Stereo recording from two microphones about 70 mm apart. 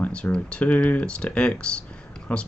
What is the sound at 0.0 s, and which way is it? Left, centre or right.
Speech, centre.